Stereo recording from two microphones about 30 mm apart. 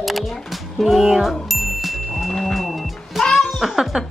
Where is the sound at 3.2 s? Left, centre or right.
Centre.